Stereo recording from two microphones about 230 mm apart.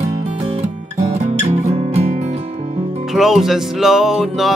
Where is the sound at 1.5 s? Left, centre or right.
Right.